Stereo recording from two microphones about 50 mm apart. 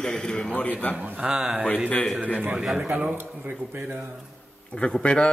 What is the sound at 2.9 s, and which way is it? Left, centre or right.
Speech, right.